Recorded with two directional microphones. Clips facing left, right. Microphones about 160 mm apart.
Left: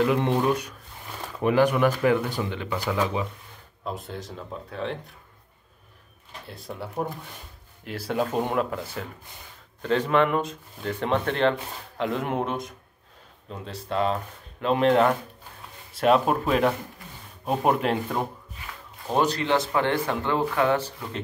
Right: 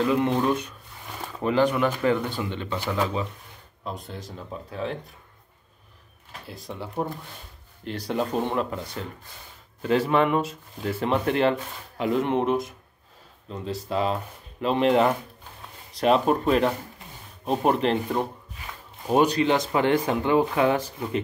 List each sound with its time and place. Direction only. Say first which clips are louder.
0.0 s speech: even; 15° left (ahead or behind)
3.8 s speech: left 2 dB; centre (ahead or behind)
6.5 s speech: right 1 dB; centre (ahead or behind)
17.8 s speech: right 2 dB; 5° left (ahead or behind)
19.0 s speech: right 3 dB; 10° right (ahead or behind)